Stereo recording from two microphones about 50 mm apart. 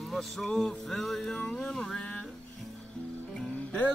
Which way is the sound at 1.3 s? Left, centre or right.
Centre.